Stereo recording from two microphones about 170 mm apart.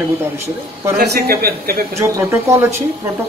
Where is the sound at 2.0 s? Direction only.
15° right (ahead or behind).